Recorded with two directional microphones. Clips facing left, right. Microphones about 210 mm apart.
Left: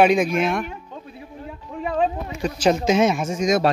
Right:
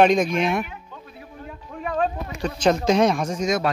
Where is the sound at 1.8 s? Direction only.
25° left (ahead or behind).